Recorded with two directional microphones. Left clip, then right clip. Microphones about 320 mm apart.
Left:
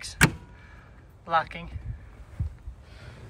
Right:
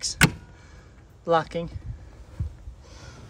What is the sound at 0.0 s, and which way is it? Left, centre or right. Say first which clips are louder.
Vehicle: right 2 dB; centre.